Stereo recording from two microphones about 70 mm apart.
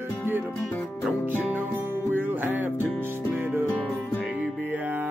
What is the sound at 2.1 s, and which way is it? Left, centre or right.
Music, right.